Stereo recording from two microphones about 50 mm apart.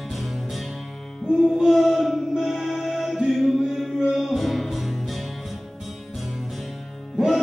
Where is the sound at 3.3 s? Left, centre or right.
Centre.